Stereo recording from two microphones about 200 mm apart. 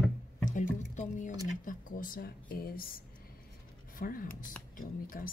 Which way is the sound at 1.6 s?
45° left (ahead or behind).